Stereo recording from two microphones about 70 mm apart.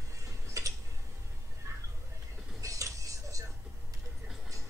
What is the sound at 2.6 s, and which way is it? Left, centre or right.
Music, right.